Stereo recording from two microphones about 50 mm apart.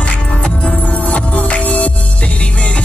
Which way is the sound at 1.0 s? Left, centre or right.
Left.